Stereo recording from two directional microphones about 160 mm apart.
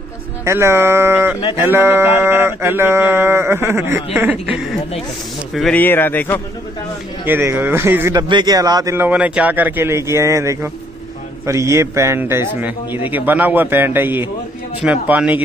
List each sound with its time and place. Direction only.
0.5 s a man's voice: 15° right (ahead or behind)
5.5 s a man's voice: 5° left (ahead or behind)
7.2 s a man's voice: 15° right (ahead or behind)
8.2 s a man's voice: 25° right (ahead or behind); by 15.4 s 10° right (ahead or behind)